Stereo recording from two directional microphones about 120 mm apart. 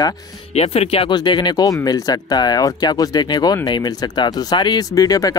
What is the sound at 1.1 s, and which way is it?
Speech, 40° left (ahead or behind).